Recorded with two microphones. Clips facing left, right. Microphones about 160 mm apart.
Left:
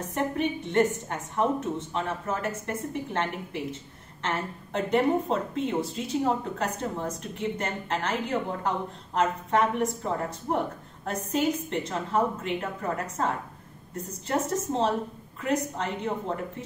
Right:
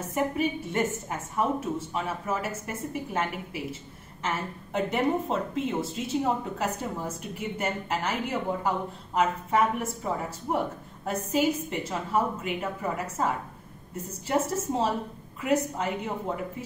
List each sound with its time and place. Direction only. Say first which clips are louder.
0.1 s a woman's voice: right 1 dB; 5° right (ahead or behind)